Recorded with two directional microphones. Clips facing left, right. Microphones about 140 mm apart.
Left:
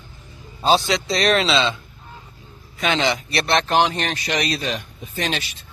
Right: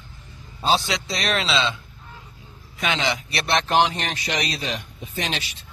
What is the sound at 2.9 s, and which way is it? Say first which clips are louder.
Speech: left 4 dB; 10° right (ahead or behind).